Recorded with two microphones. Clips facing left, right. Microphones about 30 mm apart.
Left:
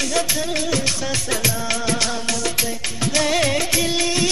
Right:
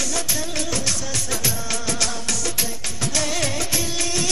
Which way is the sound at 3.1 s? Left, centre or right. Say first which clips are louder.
Left 6 dB; left.